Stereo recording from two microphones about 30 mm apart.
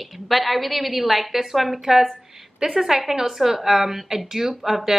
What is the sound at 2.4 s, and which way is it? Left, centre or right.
A woman's voice, centre.